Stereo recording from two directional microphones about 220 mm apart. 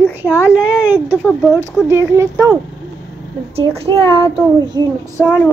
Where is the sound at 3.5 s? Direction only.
25° right (ahead or behind).